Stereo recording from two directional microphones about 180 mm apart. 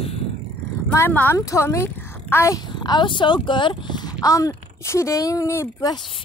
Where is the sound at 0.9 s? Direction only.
10° left (ahead or behind).